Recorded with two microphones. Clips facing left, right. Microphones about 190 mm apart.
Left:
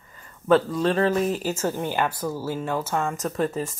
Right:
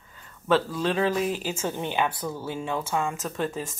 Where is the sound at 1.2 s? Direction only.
45° left (ahead or behind).